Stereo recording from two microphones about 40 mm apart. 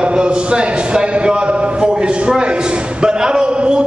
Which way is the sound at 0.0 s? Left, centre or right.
Right.